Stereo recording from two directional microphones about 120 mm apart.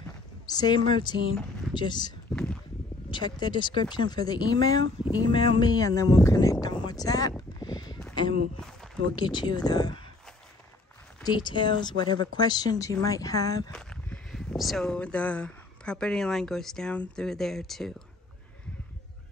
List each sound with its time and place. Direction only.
0.5 s speech: 35° left (ahead or behind)
8.1 s a sound: 40° left (ahead or behind)
8.5 s a sound: 5° left (ahead or behind)
9.1 s speech: 40° left (ahead or behind)
11.2 s speech: 40° left (ahead or behind)
13.7 s speech: 5° left (ahead or behind)